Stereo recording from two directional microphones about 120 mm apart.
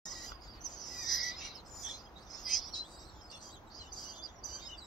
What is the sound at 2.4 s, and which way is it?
Bird, centre (ahead or behind).